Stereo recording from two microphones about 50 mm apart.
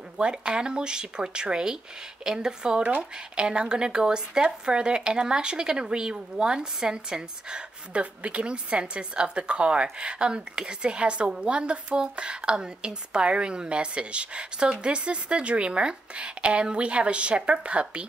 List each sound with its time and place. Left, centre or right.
0.2 s speech: centre